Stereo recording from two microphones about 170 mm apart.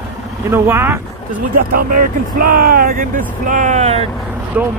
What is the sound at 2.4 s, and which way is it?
Speech, 60° right (ahead or behind).